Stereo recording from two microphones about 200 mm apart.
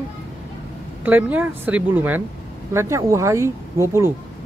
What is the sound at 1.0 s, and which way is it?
Speech, 10° right (ahead or behind).